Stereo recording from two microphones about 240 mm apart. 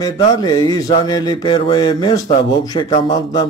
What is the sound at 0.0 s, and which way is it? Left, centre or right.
A man's voice, centre.